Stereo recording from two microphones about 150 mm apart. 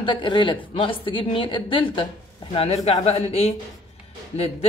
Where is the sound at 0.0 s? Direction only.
35° left (ahead or behind).